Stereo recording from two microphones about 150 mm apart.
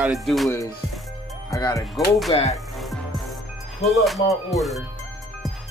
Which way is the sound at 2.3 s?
35° left (ahead or behind).